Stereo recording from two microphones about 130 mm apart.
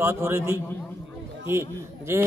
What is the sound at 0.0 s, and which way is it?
Speech, 20° right (ahead or behind).